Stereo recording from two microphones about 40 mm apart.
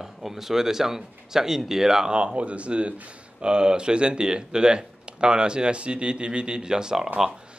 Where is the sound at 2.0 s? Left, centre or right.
Right.